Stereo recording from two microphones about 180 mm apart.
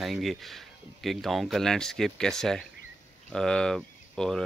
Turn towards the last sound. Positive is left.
turn(degrees=5)  # may be behind; listen again after turning